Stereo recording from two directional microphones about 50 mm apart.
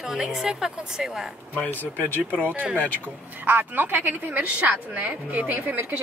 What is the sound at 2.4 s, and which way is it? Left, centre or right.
A woman's voice, right.